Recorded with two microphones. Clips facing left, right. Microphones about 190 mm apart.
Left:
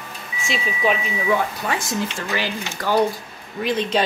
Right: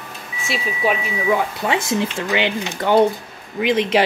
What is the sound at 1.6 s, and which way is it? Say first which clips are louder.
Speech: right 4 dB; 25° right (ahead or behind).